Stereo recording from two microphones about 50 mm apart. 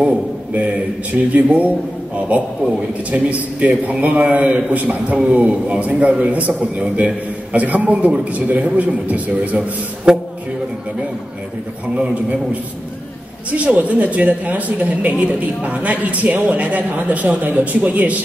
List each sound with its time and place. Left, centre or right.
0.0 s a man's voice: right
3.1 s a man's voice: right
10.1 s speech: centre
13.5 s speech: right